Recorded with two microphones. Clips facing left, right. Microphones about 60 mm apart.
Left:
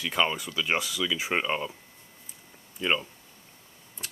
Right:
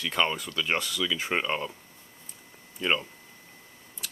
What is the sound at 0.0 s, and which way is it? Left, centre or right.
Speech, centre.